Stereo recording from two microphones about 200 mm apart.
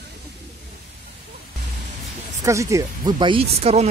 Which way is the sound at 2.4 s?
15° right (ahead or behind).